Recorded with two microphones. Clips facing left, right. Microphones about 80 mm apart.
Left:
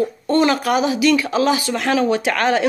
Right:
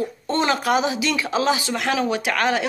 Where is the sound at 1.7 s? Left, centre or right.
Centre.